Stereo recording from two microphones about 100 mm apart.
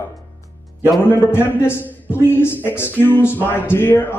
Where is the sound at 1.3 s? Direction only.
25° left (ahead or behind).